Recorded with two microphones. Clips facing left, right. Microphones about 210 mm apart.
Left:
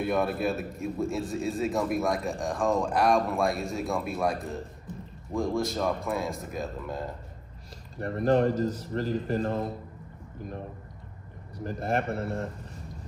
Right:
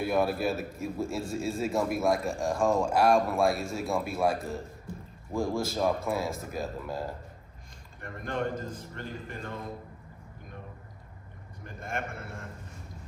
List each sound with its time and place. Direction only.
0.0 s a man's voice: centre (ahead or behind)
8.0 s a man's voice: 35° left (ahead or behind)
11.5 s a man's voice: 35° left (ahead or behind)